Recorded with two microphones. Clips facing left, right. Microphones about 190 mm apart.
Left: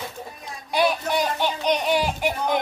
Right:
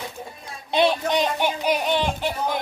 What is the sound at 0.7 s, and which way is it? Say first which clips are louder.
Child singing: right 2 dB; 25° right (ahead or behind).